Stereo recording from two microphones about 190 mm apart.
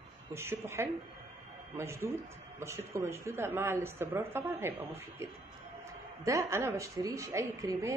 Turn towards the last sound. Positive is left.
turn(degrees=-15)  # may be behind; listen again after turning